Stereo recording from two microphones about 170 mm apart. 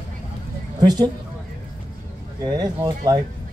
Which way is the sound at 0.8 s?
25° right (ahead or behind).